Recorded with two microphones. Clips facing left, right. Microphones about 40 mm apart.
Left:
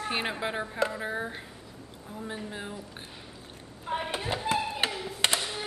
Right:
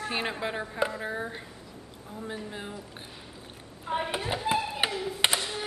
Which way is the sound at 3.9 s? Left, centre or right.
Centre.